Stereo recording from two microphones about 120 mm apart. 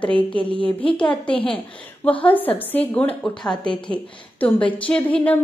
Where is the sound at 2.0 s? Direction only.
15° left (ahead or behind).